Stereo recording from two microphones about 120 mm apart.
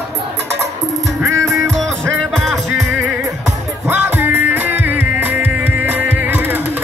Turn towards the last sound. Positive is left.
turn(degrees=-15)  # may be behind; listen again after turning